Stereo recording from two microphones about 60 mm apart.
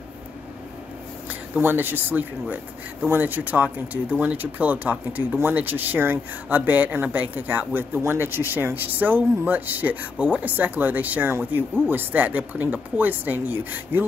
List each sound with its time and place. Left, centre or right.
1.6 s speech: right